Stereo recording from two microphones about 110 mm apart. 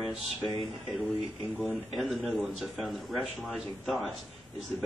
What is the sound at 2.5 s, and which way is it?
A man's voice, centre (ahead or behind).